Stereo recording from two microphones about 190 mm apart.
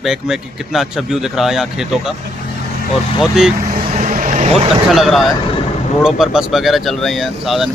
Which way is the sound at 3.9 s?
45° right (ahead or behind).